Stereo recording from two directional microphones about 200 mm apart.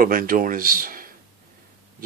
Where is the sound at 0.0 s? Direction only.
45° right (ahead or behind).